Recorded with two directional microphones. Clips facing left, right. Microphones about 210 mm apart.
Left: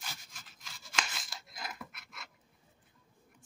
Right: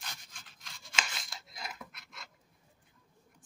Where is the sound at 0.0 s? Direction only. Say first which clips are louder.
Left 1 dB; 5° left (ahead or behind).